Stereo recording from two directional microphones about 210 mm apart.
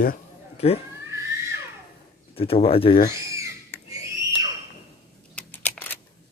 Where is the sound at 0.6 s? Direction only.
30° left (ahead or behind).